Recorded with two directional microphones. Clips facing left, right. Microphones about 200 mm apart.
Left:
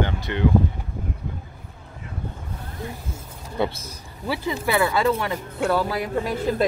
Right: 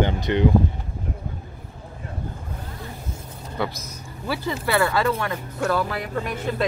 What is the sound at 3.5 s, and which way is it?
Speech, 25° left (ahead or behind).